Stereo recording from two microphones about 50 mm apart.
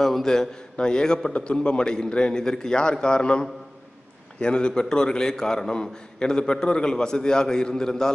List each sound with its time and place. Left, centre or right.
0.0 s a man's voice: centre